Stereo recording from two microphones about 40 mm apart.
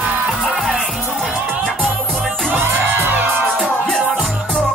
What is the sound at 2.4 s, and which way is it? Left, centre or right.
Music, right.